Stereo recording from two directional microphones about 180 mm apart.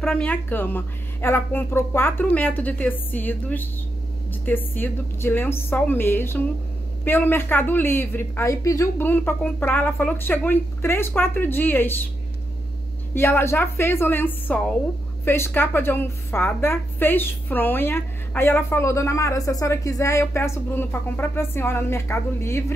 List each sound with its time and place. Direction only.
0.0 s a woman's voice: 5° left (ahead or behind)
4.7 s a woman's voice: 10° left (ahead or behind)
13.1 s a woman's voice: 15° left (ahead or behind)